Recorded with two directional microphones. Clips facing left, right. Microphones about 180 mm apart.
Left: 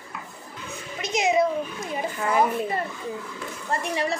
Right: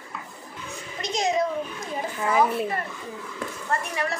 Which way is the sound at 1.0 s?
5° left (ahead or behind).